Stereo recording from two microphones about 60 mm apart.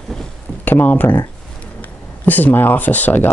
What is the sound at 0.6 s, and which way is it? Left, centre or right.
Speech, left.